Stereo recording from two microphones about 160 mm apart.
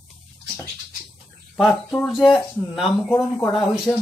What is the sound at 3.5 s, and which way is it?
Speech, centre (ahead or behind).